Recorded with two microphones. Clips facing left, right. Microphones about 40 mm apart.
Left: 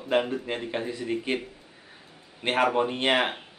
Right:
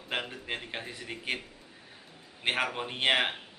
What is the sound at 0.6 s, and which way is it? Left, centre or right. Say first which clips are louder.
Speech: left 9 dB; centre.